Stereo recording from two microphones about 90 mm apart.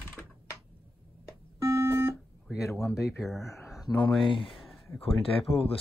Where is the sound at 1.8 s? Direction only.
25° right (ahead or behind).